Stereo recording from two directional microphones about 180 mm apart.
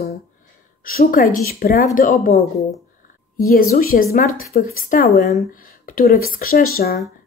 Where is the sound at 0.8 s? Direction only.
50° left (ahead or behind).